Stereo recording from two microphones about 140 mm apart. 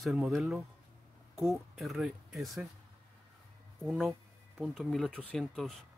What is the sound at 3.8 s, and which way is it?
Speech, centre (ahead or behind).